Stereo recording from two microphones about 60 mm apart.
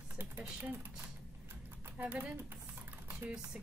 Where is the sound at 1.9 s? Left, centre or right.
Right.